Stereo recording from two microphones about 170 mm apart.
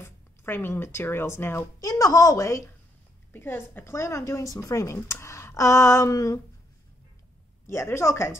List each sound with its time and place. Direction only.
0.0 s speech: 15° left (ahead or behind)
7.6 s speech: 15° left (ahead or behind)